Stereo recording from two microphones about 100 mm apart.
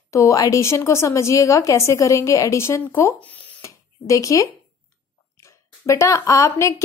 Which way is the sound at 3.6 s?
30° left (ahead or behind).